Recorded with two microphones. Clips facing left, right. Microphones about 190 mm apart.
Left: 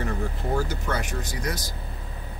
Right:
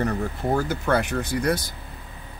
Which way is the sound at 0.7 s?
60° right (ahead or behind).